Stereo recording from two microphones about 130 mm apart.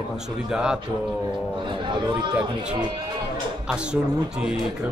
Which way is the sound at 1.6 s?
40° right (ahead or behind).